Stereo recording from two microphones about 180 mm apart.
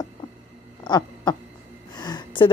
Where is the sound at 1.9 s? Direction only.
25° left (ahead or behind).